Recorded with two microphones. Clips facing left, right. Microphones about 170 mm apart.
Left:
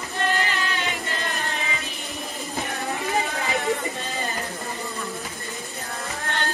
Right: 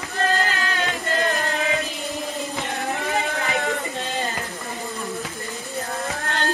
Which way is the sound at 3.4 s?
20° left (ahead or behind).